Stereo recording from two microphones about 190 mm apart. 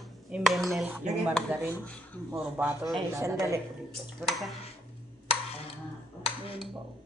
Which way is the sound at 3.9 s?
Centre (ahead or behind).